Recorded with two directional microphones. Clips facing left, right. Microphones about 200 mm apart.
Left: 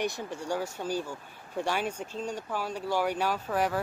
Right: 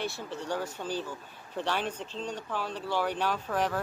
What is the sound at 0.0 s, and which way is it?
Speech, 15° left (ahead or behind).